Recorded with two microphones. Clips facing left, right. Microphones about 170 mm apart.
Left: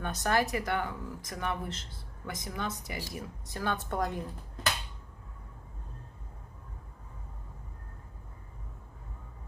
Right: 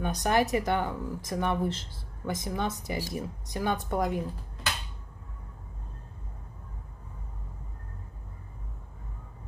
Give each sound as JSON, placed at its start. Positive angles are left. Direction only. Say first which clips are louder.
{"t": 0.0, "sound": "speech", "louder": "right 3 dB", "side_deg": -15}